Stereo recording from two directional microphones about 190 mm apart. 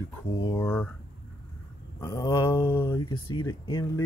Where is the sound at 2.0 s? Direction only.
20° left (ahead or behind).